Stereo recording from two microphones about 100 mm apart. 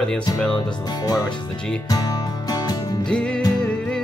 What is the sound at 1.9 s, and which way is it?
Music, 40° left (ahead or behind).